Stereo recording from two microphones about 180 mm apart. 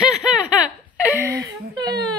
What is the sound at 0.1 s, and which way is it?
Laughter, 5° right (ahead or behind).